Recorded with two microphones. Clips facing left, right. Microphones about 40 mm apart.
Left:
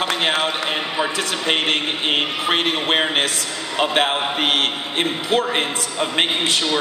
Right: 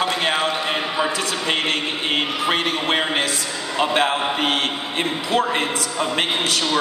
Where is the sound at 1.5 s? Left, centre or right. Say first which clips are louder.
Left 3 dB; left.